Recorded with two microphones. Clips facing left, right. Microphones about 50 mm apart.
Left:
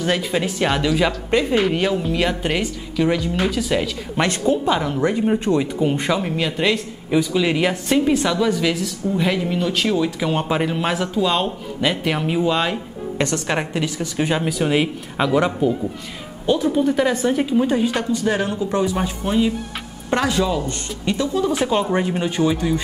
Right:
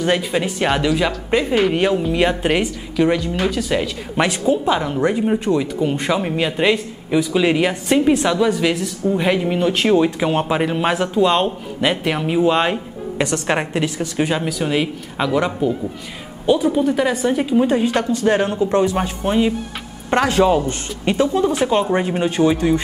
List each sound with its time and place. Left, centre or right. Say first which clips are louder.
0.0 s speech: right 2 dB; centre
6.1 s speech: right 2 dB; centre
12.4 s speech: right 3 dB; centre
14.2 s speech: even; centre
18.2 s speech: right 4 dB; centre
21.5 s speech: right 2 dB; centre
22.3 s speech: right 5 dB; centre